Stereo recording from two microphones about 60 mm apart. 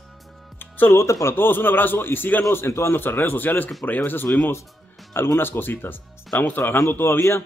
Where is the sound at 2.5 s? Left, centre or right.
Left.